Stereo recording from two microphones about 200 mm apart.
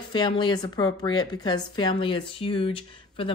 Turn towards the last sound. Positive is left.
turn(degrees=25)  # may be behind; listen again after turning